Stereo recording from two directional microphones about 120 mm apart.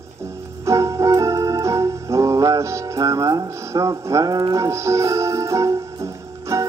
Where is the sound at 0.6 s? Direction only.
25° right (ahead or behind).